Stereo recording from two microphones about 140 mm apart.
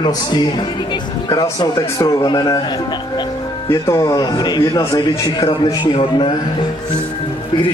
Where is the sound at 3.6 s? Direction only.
20° left (ahead or behind).